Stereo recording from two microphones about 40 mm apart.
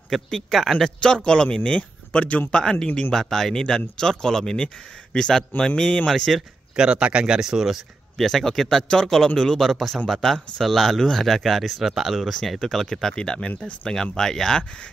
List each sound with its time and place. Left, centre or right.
0.1 s speech: centre
0.8 s a man's voice: left
1.6 s speech: left
2.5 s a man's voice: centre
3.1 s a man's voice: centre
6.1 s speech: centre
6.8 s speech: right
7.3 s speech: centre
8.2 s speech: centre
9.6 s speech: centre
11.8 s speech: centre
13.1 s a man's voice: left